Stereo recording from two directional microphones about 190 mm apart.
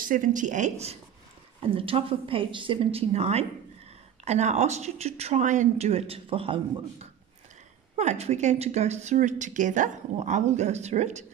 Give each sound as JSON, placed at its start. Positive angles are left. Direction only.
{"t": 0.0, "sound": "a woman's voice", "side_deg": -45}